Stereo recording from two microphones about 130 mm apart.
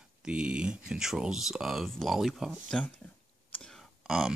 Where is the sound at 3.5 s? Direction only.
5° left (ahead or behind).